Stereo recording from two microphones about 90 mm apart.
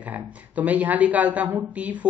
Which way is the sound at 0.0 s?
20° right (ahead or behind).